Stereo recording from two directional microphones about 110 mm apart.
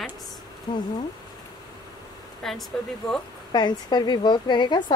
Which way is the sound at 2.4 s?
Centre (ahead or behind).